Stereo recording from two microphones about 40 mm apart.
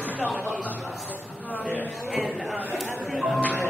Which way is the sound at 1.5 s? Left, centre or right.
Left.